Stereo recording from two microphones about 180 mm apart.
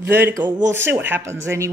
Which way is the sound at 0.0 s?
10° right (ahead or behind).